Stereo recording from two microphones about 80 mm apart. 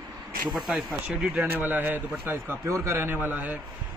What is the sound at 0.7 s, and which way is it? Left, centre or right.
Speech, centre.